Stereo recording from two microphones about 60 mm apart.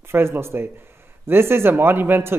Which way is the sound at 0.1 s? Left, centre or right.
Right.